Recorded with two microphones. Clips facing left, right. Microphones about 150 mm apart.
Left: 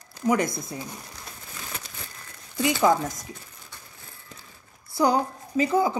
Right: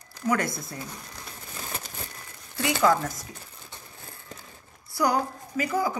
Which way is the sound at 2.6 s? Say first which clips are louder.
Left 2 dB; 20° left (ahead or behind).